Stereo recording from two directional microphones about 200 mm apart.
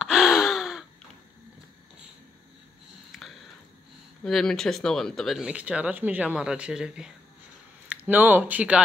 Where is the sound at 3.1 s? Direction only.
Centre (ahead or behind).